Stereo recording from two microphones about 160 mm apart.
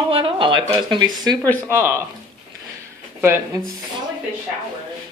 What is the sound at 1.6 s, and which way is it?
Speech, 15° right (ahead or behind).